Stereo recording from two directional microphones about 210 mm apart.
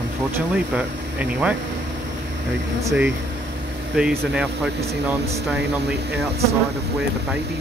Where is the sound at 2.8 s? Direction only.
5° right (ahead or behind).